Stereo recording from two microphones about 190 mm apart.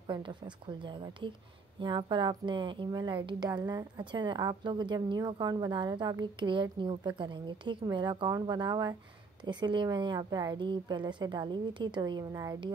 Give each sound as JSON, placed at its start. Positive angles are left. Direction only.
{"t": 0.0, "sound": "a woman's voice", "side_deg": -25}